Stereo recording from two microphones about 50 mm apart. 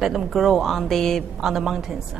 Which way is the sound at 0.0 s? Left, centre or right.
Centre.